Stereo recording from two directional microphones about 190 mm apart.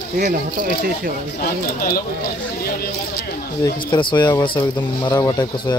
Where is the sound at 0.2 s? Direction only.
45° right (ahead or behind).